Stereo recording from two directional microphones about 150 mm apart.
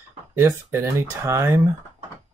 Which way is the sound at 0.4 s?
15° right (ahead or behind).